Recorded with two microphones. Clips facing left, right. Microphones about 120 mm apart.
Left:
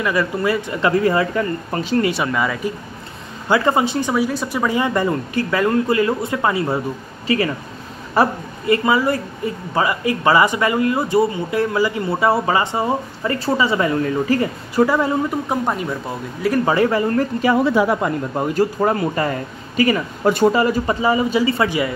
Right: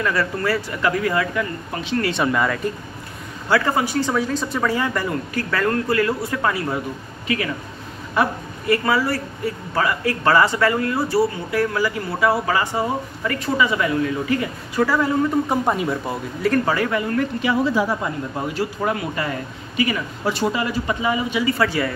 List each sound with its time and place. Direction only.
0.0 s speech: 15° left (ahead or behind); by 2.0 s 40° left (ahead or behind)
2.2 s speech: 5° left (ahead or behind)
3.4 s speech: 20° left (ahead or behind); by 8.3 s 35° left (ahead or behind)
8.6 s speech: 20° left (ahead or behind)
15.4 s speech: centre (ahead or behind)
16.6 s speech: 25° left (ahead or behind)
17.6 s speech: 60° left (ahead or behind); by 21.6 s 30° left (ahead or behind)
21.6 s speech: 15° left (ahead or behind)